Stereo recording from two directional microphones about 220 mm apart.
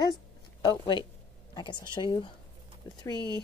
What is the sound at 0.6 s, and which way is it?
A woman's voice, 20° left (ahead or behind).